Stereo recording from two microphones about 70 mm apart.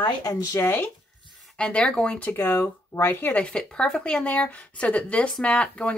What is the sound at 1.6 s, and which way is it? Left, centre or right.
Speech, centre.